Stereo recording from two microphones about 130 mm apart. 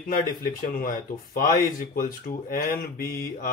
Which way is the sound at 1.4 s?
90° left.